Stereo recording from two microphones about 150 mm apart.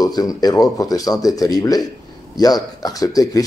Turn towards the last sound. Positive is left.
turn(degrees=25)  # may be behind; listen again after turning